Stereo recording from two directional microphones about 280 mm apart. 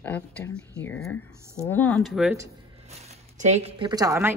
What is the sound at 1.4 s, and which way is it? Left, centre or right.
Speech, centre.